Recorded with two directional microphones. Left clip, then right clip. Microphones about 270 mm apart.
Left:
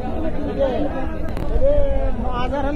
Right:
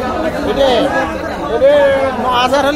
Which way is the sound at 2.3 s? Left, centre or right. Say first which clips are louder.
Right 11 dB; right.